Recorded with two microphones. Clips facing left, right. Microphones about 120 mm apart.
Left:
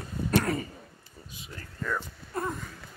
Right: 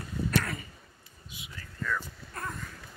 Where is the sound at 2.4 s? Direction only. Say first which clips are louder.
Left 7 dB; 25° left (ahead or behind).